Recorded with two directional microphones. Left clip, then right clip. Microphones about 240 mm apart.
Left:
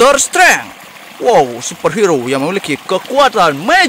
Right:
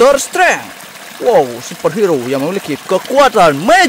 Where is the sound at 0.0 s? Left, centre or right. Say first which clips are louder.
Left 1 dB; centre.